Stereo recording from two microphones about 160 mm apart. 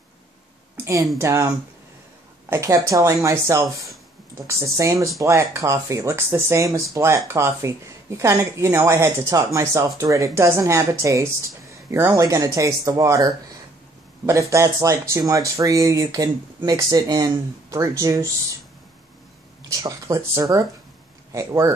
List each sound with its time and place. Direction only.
0.8 s a woman's voice: 15° right (ahead or behind)
2.5 s speech: 20° right (ahead or behind)
19.7 s speech: 20° right (ahead or behind)